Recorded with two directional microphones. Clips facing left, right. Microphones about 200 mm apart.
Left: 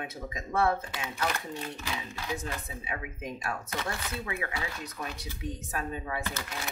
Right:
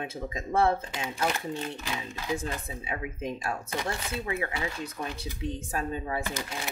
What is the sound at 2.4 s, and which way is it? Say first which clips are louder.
Speech: right 3 dB; 25° right (ahead or behind).